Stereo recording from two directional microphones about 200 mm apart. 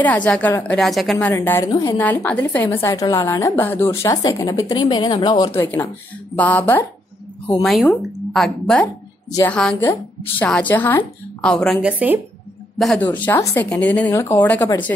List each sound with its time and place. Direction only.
0.0 s a woman's voice: 10° left (ahead or behind)
1.3 s a woman's voice: 15° left (ahead or behind)
5.5 s a woman's voice: 10° left (ahead or behind); by 12.2 s 5° right (ahead or behind)
12.7 s a woman's voice: 5° left (ahead or behind)